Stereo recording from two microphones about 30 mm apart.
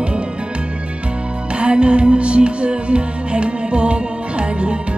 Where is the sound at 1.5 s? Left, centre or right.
Right.